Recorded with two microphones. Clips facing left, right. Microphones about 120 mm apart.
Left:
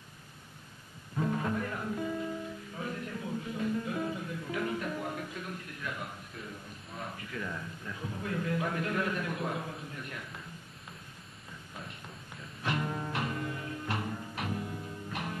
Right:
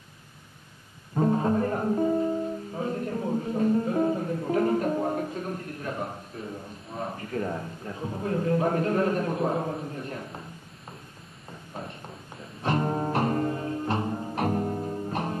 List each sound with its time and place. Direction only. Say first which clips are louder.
1.1 s music: right 8 dB; 35° right (ahead or behind)
11.7 s a sound: right 8 dB; 40° right (ahead or behind)
12.6 s music: right 8 dB; 40° right (ahead or behind)